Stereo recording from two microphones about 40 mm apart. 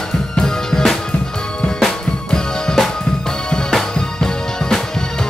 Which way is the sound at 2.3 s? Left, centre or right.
Centre.